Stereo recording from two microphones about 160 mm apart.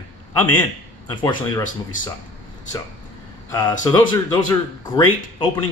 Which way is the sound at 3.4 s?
20° left (ahead or behind).